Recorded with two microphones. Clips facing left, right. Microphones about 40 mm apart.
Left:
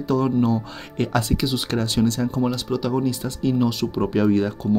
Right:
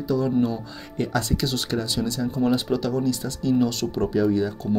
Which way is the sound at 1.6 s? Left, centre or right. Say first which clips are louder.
Left 4 dB; left.